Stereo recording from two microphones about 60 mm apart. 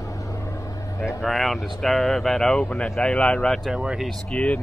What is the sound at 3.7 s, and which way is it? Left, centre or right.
Speech, centre.